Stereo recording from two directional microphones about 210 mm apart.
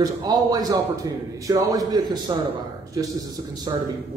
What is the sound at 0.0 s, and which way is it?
A man's voice, 20° right (ahead or behind).